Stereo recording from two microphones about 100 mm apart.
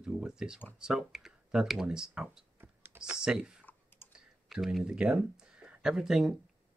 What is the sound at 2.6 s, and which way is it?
Computer keyboard, 20° right (ahead or behind).